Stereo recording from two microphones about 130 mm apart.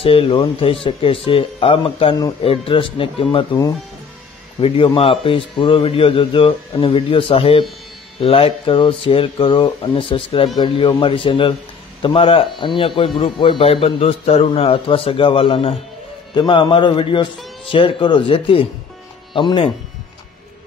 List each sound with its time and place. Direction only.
0.0 s a man's voice: 45° left (ahead or behind)
4.6 s a man's voice: 45° left (ahead or behind)